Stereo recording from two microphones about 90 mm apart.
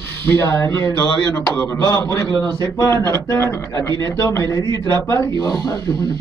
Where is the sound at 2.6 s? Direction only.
35° left (ahead or behind).